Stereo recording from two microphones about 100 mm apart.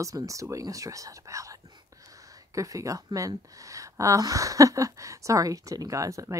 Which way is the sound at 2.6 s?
35° right (ahead or behind).